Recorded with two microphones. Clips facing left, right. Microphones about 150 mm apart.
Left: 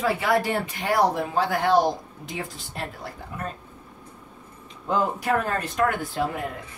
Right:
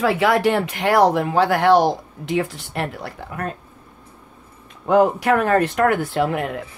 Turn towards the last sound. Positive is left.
turn(degrees=-80)